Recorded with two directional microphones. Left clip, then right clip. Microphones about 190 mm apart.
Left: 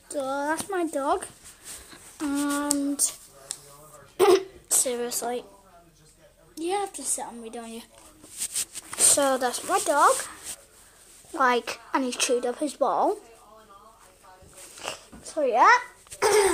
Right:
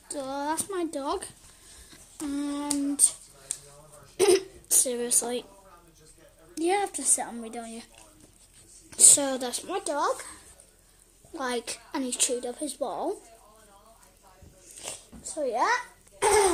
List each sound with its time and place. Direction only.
0.1 s a sound: 10° right (ahead or behind)
0.7 s speech: 10° right (ahead or behind)
1.9 s humming: 5° right (ahead or behind)
4.2 s hiccup: 20° right (ahead or behind)
6.5 s a woman's voice: 20° right (ahead or behind)
7.6 s speech: centre (ahead or behind)
8.9 s speech: 20° right (ahead or behind)
11.3 s a woman's voice: centre (ahead or behind)
14.8 s a sound: centre (ahead or behind)